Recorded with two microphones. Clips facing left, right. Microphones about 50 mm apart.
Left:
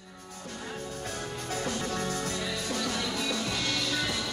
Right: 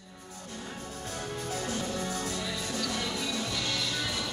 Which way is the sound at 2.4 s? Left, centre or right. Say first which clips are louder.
Left 2 dB; left.